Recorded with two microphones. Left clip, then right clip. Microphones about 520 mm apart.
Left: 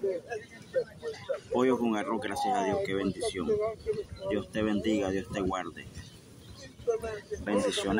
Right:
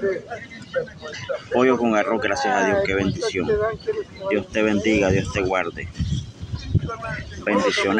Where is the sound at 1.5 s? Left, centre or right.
Left.